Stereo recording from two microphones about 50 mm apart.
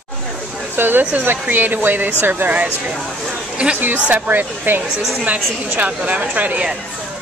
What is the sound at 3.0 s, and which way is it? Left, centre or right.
Speech, centre.